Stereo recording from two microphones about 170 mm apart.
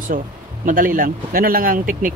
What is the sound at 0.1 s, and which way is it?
Speech, 55° right (ahead or behind).